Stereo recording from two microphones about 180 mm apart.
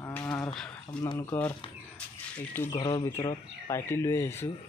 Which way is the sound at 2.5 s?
20° left (ahead or behind).